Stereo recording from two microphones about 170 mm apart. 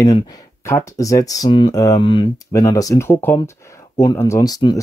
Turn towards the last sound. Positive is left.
turn(degrees=25)  # may be behind; listen again after turning